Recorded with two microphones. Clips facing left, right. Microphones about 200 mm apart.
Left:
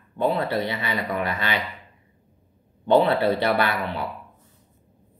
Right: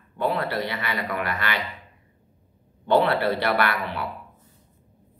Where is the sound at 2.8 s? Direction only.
20° left (ahead or behind).